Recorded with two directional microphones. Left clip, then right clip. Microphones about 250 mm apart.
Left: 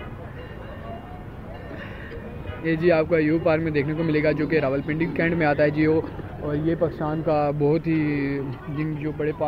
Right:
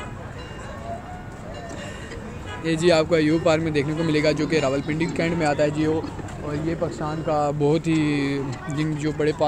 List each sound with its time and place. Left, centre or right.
2.6 s speech: centre
6.7 s speech: centre
7.6 s speech: centre; by 9.4 s right